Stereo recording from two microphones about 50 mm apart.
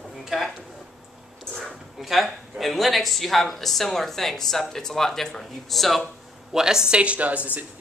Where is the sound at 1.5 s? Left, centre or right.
Centre.